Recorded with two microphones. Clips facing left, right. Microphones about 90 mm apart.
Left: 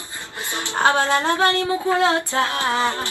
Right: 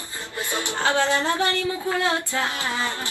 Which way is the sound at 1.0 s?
60° left (ahead or behind).